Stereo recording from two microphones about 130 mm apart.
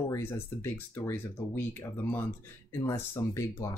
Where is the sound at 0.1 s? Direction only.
20° left (ahead or behind).